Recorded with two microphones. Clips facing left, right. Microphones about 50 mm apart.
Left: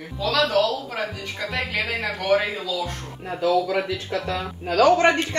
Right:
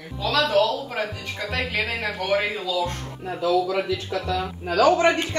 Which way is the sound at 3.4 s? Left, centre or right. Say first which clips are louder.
Left 1 dB; left.